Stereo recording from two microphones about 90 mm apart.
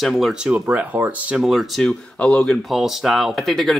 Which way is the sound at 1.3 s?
5° right (ahead or behind).